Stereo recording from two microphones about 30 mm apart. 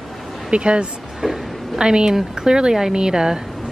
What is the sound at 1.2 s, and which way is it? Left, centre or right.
Speech, centre.